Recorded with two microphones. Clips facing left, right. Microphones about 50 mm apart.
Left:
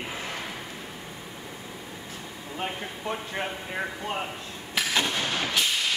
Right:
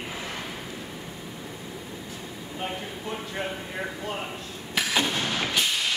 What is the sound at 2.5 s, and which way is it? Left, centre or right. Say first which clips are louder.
Speech: even; centre.